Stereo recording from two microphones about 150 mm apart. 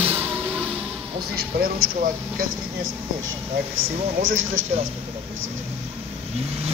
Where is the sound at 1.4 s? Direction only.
90° right.